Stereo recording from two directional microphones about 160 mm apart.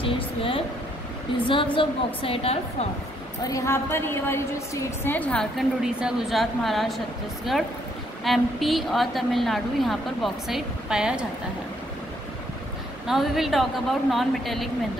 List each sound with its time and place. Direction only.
0.0 s a woman's voice: 35° left (ahead or behind)
3.4 s a woman's voice: 20° left (ahead or behind); by 7.0 s centre (ahead or behind)
8.2 s a woman's voice: centre (ahead or behind)
13.0 s a woman's voice: centre (ahead or behind)